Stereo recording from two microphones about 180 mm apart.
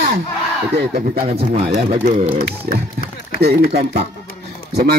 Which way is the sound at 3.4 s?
60° right (ahead or behind).